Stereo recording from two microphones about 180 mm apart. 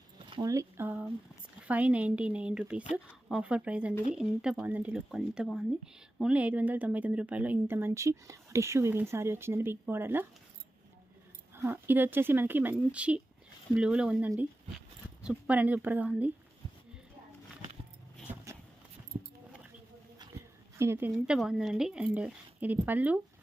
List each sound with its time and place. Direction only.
0.3 s speech: 20° right (ahead or behind)
11.5 s speech: 10° right (ahead or behind)
19.1 s a sound: 45° right (ahead or behind)
20.7 s speech: 15° right (ahead or behind)
21.4 s speech: centre (ahead or behind)